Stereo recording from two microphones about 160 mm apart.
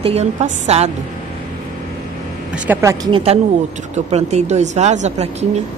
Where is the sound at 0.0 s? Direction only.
40° right (ahead or behind).